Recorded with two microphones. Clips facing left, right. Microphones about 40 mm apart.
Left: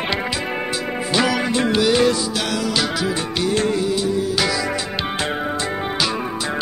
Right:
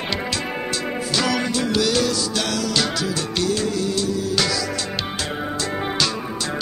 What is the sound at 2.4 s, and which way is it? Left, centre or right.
Music, centre.